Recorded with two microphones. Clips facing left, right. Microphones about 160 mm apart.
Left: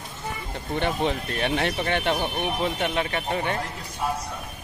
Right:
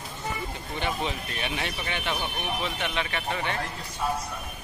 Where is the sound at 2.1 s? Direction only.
40° left (ahead or behind).